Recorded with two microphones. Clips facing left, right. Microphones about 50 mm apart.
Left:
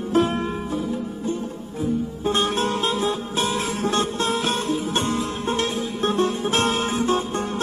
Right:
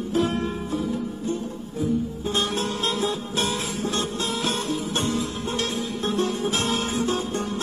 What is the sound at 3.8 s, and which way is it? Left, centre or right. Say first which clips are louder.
Music: left 5 dB; left.